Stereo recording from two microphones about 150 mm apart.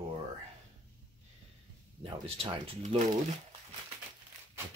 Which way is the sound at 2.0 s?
40° right (ahead or behind).